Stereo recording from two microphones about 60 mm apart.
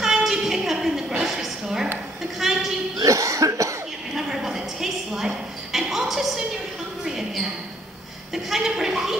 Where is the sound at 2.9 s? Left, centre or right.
Right.